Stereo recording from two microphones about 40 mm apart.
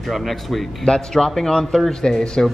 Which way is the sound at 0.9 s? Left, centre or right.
Left.